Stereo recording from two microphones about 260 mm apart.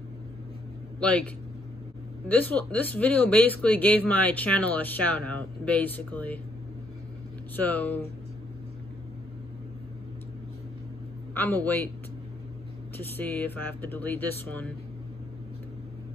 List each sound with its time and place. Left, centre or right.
0.9 s speech: centre
7.5 s speech: centre
11.3 s speech: centre
12.9 s speech: centre